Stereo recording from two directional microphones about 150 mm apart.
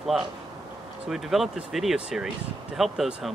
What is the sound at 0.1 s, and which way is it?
Speech, centre (ahead or behind).